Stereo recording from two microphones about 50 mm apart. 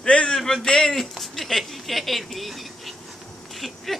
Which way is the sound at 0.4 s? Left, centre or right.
Centre.